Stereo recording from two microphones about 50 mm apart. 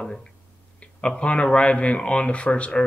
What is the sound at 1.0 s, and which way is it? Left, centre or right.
Speech, left.